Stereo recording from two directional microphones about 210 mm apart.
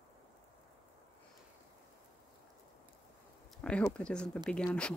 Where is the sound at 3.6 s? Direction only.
5° left (ahead or behind).